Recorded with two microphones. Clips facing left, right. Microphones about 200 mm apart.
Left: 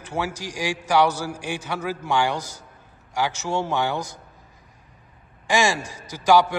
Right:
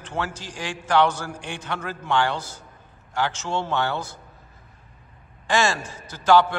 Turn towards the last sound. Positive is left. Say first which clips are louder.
# even
turn(degrees=10)  # may be behind; listen again after turning